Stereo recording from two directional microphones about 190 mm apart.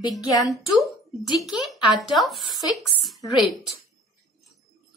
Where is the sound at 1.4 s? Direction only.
Centre (ahead or behind).